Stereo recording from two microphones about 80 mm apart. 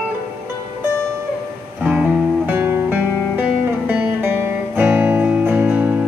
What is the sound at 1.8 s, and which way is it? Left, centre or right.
Music, centre.